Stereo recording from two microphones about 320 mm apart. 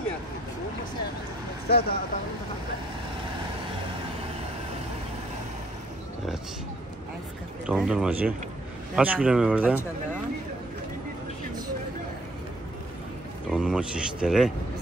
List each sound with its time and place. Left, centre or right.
1.7 s speech: left
7.6 s speech: centre
13.5 s speech: centre